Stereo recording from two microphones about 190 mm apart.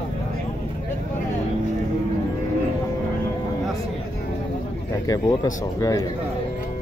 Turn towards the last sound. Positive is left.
turn(degrees=20)  # may be behind; listen again after turning